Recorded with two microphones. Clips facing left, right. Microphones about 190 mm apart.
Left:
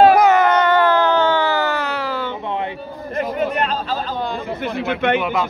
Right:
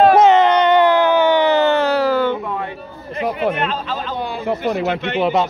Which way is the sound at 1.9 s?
40° right (ahead or behind).